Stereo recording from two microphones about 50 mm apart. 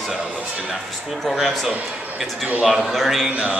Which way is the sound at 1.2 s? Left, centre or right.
Centre.